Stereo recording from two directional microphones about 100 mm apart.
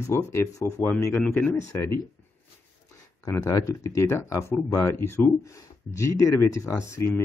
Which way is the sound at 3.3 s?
35° left (ahead or behind).